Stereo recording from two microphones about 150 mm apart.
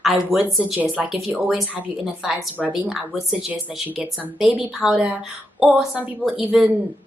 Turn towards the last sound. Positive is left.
turn(degrees=-5)  # may be behind; listen again after turning